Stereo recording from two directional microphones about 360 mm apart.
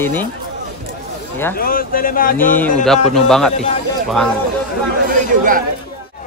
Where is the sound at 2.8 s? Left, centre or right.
Centre.